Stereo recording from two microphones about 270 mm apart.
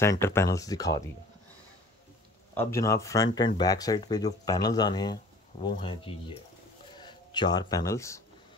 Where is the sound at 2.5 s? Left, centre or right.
Centre.